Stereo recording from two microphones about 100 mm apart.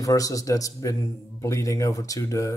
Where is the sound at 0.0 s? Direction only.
35° left (ahead or behind).